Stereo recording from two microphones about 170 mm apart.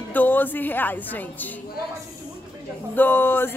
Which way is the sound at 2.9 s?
10° left (ahead or behind).